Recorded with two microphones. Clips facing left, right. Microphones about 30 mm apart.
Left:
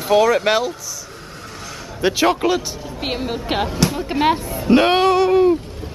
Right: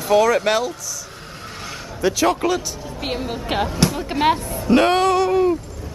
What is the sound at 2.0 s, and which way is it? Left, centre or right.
Speech, left.